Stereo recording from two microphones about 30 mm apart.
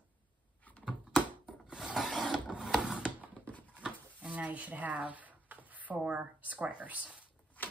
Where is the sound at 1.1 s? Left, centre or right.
Right.